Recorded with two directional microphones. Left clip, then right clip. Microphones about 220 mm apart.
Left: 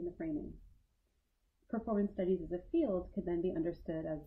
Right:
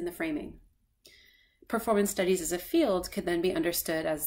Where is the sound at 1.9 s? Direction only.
15° right (ahead or behind).